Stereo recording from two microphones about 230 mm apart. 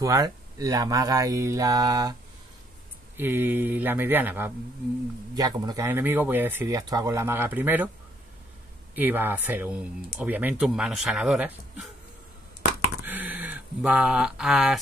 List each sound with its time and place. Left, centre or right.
0.0 s speech: centre
3.2 s speech: centre
8.9 s speech: centre
13.0 s a sound: centre